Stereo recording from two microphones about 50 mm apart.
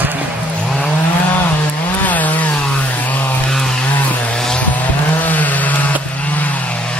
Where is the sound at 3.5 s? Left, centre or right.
Centre.